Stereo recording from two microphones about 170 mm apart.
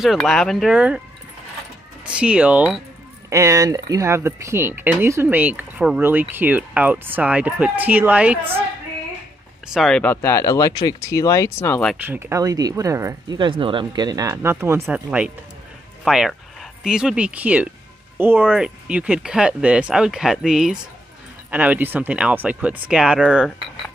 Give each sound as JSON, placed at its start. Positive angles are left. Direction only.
{"t": 0.0, "sound": "speech", "side_deg": 0}
{"t": 2.0, "sound": "speech", "side_deg": -5}
{"t": 3.3, "sound": "speech", "side_deg": -20}
{"t": 9.7, "sound": "speech", "side_deg": 0}
{"t": 12.1, "sound": "speech", "side_deg": -15}
{"t": 13.4, "sound": "speech", "side_deg": -30}